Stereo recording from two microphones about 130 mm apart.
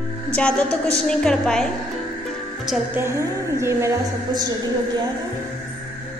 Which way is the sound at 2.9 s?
20° right (ahead or behind).